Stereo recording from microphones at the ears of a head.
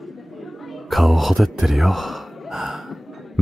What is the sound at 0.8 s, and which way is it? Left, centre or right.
Gasp, centre.